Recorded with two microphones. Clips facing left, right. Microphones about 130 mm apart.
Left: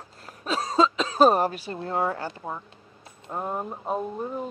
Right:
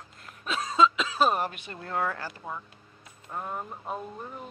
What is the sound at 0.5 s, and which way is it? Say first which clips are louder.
Speech: left 1 dB; 35° left (ahead or behind).